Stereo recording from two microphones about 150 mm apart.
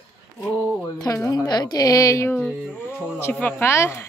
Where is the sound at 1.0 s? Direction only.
25° left (ahead or behind).